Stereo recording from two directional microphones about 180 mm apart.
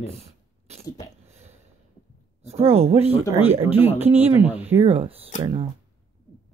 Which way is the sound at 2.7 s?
35° right (ahead or behind).